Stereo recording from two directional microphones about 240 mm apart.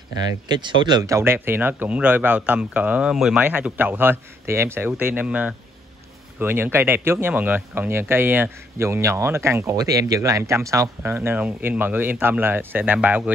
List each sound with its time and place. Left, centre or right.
0.1 s speech: centre